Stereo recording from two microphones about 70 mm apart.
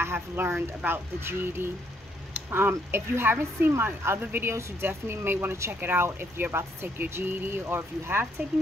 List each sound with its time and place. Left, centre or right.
0.0 s speech: right
2.3 s a sound: right
2.7 s speech: right